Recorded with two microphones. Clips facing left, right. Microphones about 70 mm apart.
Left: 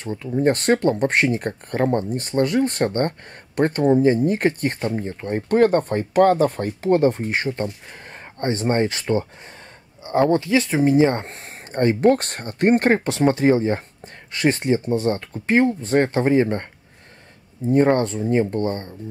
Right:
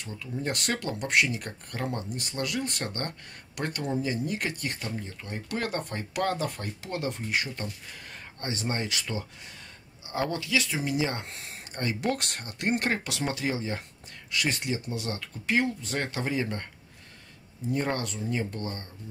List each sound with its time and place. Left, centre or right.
0.0 s speech: left
17.6 s speech: left